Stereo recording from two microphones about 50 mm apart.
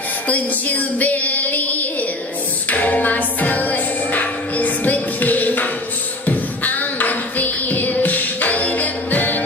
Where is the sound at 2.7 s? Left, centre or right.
Left.